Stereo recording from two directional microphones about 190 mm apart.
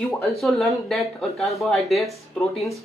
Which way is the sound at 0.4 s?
Centre (ahead or behind).